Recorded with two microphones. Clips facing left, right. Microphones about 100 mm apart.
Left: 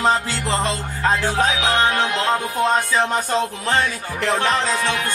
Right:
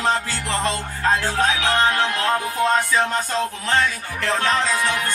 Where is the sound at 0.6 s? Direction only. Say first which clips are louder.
Left 1 dB; 20° left (ahead or behind).